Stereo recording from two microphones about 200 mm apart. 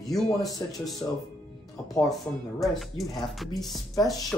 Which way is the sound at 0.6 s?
15° left (ahead or behind).